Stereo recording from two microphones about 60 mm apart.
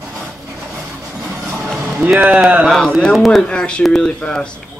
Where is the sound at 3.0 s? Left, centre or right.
Centre.